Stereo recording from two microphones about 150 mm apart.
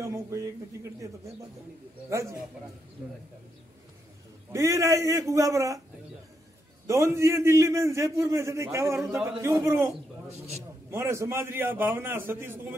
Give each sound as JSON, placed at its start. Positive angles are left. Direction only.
{"t": 0.0, "sound": "a man's voice", "side_deg": -20}
{"t": 2.0, "sound": "a man's voice", "side_deg": -20}
{"t": 4.5, "sound": "a man's voice", "side_deg": -20}
{"t": 6.9, "sound": "a man's voice", "side_deg": -20}
{"t": 10.3, "sound": "a man's voice", "side_deg": -45}
{"t": 10.9, "sound": "a man's voice", "side_deg": -15}